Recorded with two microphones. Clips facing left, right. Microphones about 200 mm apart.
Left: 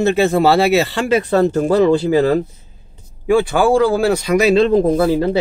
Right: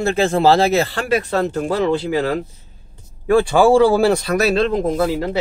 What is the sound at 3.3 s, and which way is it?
Speech, centre (ahead or behind).